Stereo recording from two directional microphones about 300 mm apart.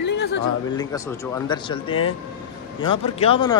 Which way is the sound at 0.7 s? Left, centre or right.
Centre.